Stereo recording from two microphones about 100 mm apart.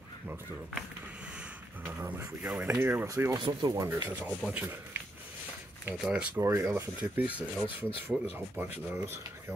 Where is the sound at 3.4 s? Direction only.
45° right (ahead or behind).